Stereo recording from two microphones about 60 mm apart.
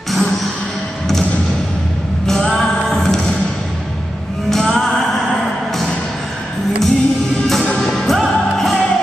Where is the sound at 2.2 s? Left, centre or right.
Centre.